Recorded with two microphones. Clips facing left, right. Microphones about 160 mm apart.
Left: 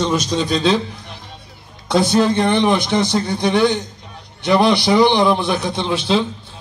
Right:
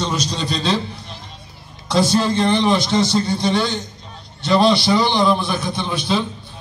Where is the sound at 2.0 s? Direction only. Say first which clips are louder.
Left 2 dB; 55° left (ahead or behind).